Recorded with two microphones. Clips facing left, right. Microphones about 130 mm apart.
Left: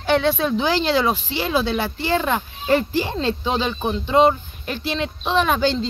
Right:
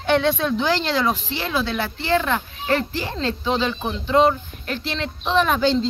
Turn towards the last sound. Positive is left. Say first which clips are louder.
# right 1 dB
turn(degrees=5)  # may be behind; listen again after turning